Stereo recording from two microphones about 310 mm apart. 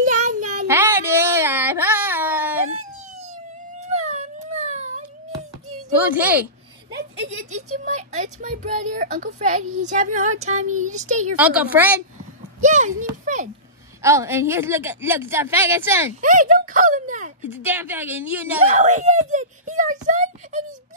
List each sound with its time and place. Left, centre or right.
0.0 s child singing: right
0.7 s baby cry: centre
3.8 s a sound: right
6.0 s a woman's voice: centre
7.5 s speech: right
11.3 s a woman's voice: centre
12.5 s a child's voice: right
14.0 s a woman's voice: centre
16.2 s speech: right
17.5 s a woman's voice: centre
18.8 s speech: right